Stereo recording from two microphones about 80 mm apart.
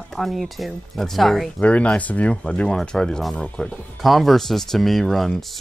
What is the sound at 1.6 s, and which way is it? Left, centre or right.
Speech, centre.